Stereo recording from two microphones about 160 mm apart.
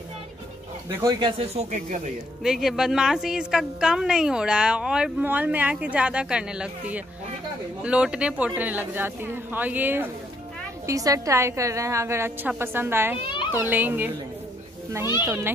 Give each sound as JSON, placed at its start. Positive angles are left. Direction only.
{"t": 1.2, "sound": "speech", "side_deg": -40}
{"t": 2.4, "sound": "a woman's voice", "side_deg": 0}
{"t": 15.2, "sound": "a woman's voice", "side_deg": -15}